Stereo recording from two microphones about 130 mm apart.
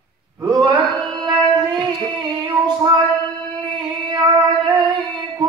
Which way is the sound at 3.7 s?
30° right (ahead or behind).